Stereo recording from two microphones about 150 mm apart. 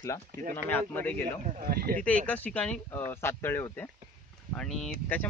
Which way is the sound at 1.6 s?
75° right (ahead or behind).